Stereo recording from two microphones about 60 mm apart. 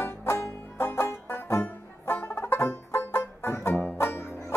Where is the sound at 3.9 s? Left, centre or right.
Left.